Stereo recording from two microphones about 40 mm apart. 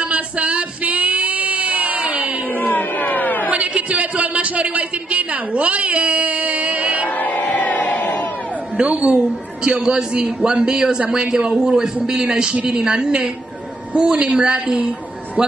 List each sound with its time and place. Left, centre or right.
0.0 s female singing: right
2.5 s a sound: left
3.4 s a man's voice: right
7.2 s crowd: left
8.7 s a woman's voice: right
9.1 s a man's voice: right
10.1 s a woman's voice: right
10.5 s a man's voice: centre
14.1 s a woman's voice: right